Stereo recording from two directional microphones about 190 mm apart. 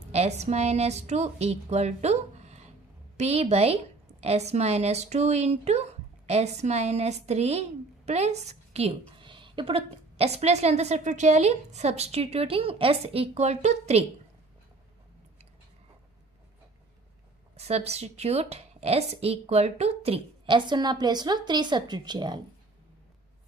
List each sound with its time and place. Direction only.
0.1 s a woman's voice: 35° right (ahead or behind)
17.6 s a woman's voice: 35° right (ahead or behind)